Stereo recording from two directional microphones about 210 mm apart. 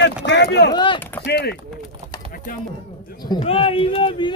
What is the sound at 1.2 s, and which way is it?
Speech, 50° left (ahead or behind).